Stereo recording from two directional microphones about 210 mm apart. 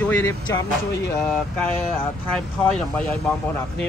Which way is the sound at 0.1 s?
10° left (ahead or behind).